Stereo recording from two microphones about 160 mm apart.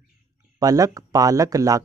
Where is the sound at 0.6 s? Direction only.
20° right (ahead or behind).